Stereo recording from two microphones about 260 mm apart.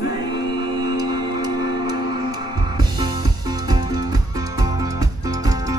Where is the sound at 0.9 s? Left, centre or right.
Centre.